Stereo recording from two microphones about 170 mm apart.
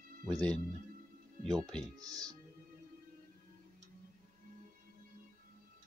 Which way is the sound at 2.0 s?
20° right (ahead or behind).